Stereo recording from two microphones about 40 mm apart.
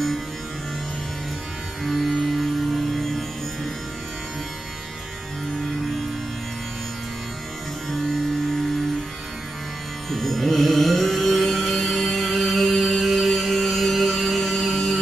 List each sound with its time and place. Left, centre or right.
1.9 s music: centre
10.1 s music: centre